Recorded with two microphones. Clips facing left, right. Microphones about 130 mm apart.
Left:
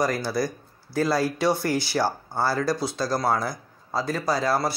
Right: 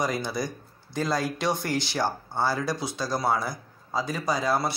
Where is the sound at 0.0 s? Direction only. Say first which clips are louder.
Left 4 dB; centre (ahead or behind).